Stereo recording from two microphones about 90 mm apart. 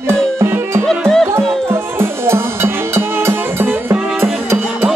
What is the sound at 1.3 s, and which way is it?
Music, 30° right (ahead or behind).